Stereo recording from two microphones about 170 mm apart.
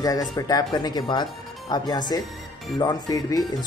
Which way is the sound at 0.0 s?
20° left (ahead or behind).